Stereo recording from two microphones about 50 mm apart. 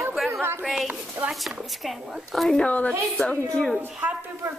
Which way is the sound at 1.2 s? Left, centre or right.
Right.